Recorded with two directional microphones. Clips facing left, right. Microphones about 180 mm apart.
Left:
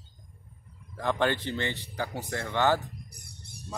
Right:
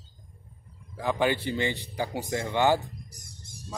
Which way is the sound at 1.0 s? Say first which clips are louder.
Right 1 dB; 5° right (ahead or behind).